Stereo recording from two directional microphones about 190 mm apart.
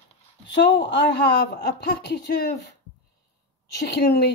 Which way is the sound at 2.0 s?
60° left (ahead or behind).